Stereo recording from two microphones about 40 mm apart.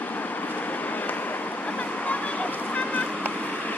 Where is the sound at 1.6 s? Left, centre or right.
Left.